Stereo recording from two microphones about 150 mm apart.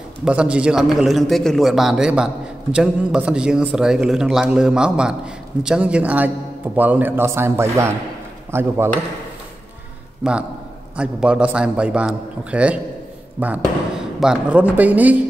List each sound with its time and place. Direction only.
0.2 s a man's voice: 5° right (ahead or behind)
10.2 s a man's voice: 10° right (ahead or behind)